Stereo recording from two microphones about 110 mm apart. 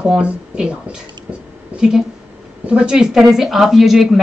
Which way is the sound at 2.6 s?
10° right (ahead or behind).